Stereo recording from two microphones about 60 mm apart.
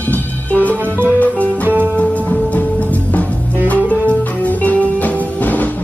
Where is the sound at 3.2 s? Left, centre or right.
Left.